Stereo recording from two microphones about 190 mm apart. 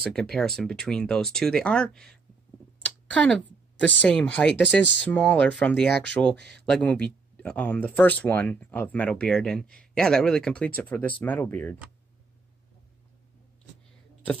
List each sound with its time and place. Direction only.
0.0 s speech: centre (ahead or behind)
6.3 s speech: 60° right (ahead or behind)
6.6 s speech: 5° left (ahead or behind)